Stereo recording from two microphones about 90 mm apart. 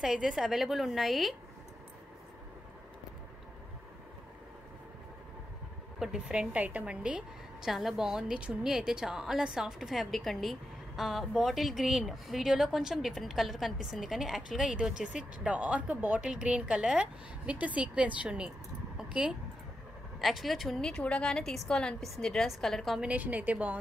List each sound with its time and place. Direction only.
0.0 s a woman's voice: 5° right (ahead or behind)
5.9 s a woman's voice: 10° right (ahead or behind)
18.9 s keys jangling: 10° right (ahead or behind)
20.2 s a woman's voice: centre (ahead or behind)
22.9 s a woman's voice: 15° right (ahead or behind)